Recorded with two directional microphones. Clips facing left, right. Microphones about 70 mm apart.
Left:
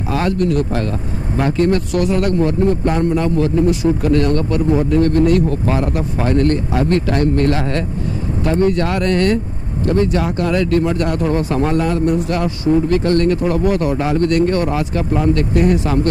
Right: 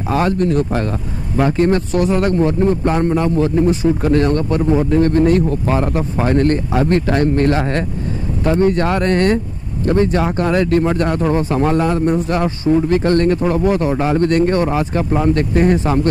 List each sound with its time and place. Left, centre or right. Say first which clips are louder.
0.1 s a man's voice: right 1 dB; right